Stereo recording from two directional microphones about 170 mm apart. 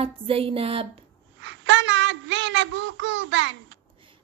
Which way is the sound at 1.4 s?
90° right.